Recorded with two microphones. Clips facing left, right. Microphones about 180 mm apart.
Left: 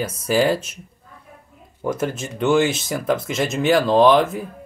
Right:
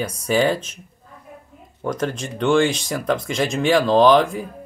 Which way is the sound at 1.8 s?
5° left (ahead or behind).